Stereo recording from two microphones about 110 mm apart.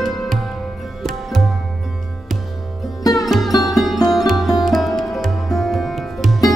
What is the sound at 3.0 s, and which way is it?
Music, 35° left (ahead or behind).